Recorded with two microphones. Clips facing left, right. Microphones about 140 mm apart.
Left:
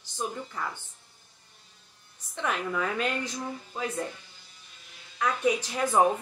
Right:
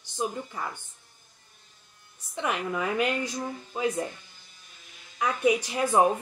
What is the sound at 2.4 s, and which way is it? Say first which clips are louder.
Speech: right 1 dB; 15° right (ahead or behind).